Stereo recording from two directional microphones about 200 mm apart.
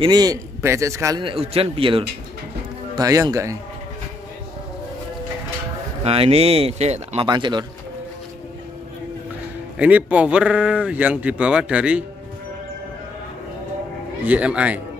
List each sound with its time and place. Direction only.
0.0 s a man's voice: 20° right (ahead or behind)
6.0 s a man's voice: 30° right (ahead or behind)
7.2 s a man's voice: 20° right (ahead or behind)
9.8 s speech: 5° right (ahead or behind)
14.2 s speech: 5° right (ahead or behind)